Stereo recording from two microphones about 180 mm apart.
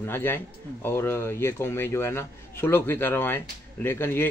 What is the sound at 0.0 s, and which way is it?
A man's voice, 10° left (ahead or behind).